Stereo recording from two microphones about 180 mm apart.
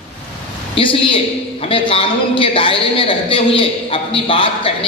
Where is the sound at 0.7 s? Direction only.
30° left (ahead or behind).